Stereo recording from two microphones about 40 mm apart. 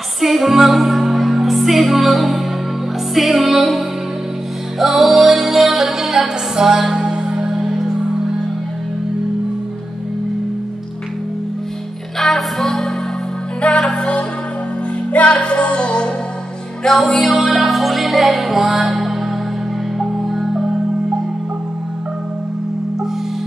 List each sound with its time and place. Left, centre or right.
0.2 s music: centre
12.2 s music: centre
13.6 s music: left
17.1 s music: centre